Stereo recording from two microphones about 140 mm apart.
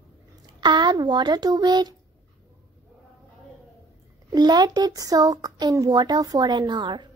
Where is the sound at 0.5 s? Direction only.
30° right (ahead or behind).